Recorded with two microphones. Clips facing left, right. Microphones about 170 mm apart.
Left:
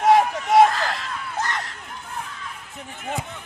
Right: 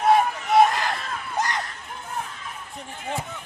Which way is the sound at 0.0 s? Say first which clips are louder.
Left 2 dB; 90° left.